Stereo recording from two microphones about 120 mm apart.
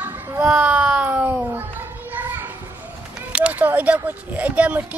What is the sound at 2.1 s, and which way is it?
Children playing, 15° right (ahead or behind).